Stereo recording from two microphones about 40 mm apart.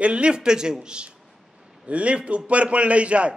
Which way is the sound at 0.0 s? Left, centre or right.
Right.